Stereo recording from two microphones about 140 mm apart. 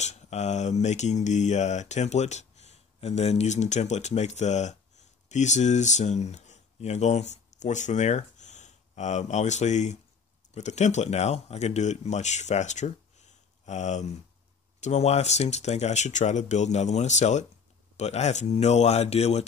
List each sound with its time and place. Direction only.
0.0 s speech: 55° left (ahead or behind)